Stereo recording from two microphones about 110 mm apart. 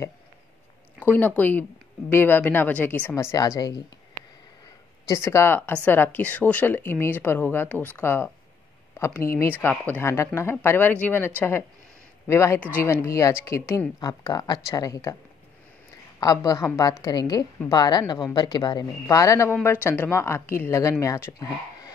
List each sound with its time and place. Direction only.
1.1 s speech: 15° left (ahead or behind); by 3.8 s 35° left (ahead or behind)
5.0 s a woman's voice: 25° left (ahead or behind)
13.9 s speech: 35° left (ahead or behind)
16.2 s speech: 35° left (ahead or behind)
19.6 s a woman's voice: 20° left (ahead or behind); by 21.9 s 35° left (ahead or behind)